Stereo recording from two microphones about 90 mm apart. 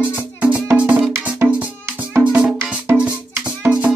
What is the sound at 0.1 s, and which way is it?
Music, 20° right (ahead or behind).